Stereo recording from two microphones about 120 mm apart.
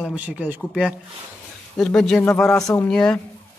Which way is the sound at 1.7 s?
5° left (ahead or behind).